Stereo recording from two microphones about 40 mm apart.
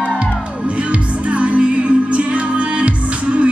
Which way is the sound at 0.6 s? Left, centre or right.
Right.